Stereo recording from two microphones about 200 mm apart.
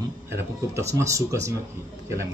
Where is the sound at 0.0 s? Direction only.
15° right (ahead or behind).